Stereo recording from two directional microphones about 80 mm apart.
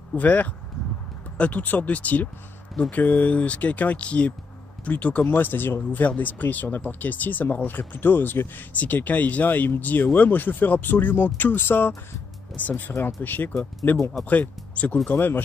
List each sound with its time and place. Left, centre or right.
0.1 s speech: centre